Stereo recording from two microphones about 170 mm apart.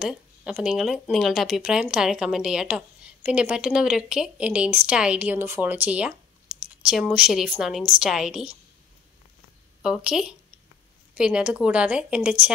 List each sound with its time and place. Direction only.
0.0 s speech: 5° right (ahead or behind)
9.8 s speech: 5° right (ahead or behind)